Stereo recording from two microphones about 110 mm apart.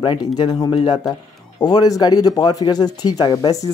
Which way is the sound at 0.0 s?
45° left (ahead or behind).